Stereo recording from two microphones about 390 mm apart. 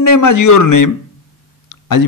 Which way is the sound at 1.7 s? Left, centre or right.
Left.